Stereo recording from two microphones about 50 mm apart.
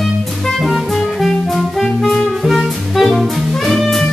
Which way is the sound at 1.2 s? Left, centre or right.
Centre.